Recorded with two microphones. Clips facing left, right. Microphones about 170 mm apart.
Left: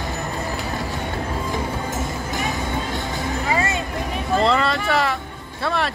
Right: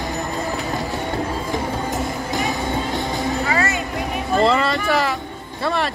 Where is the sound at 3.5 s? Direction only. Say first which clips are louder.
Left 2 dB; 20° left (ahead or behind).